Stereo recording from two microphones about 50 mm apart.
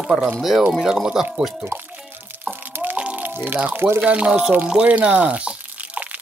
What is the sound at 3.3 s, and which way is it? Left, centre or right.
Speech, right.